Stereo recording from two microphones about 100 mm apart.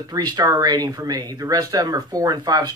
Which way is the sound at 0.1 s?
45° right (ahead or behind).